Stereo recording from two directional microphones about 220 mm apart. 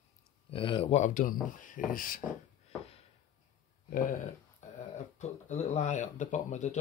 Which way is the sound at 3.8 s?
40° left (ahead or behind).